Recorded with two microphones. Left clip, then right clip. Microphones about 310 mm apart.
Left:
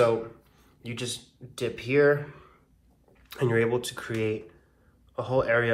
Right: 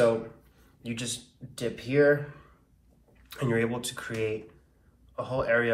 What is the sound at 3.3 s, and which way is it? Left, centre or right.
Speech, centre.